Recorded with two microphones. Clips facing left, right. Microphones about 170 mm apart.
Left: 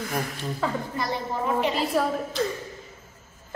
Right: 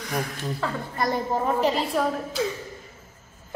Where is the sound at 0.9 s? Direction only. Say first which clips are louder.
Right 4 dB; 45° right (ahead or behind).